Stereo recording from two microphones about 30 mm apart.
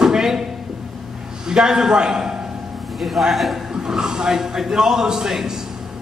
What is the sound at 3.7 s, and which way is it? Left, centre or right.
A man's voice, right.